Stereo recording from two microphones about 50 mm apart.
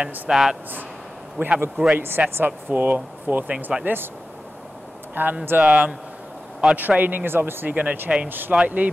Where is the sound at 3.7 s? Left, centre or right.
Right.